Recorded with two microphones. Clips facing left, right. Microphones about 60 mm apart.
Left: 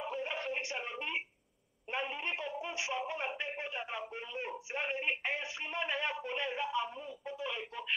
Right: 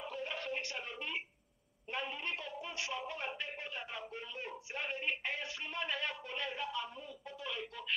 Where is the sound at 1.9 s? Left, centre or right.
Left.